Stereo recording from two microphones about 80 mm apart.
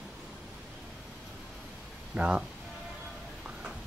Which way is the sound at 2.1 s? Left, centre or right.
Centre.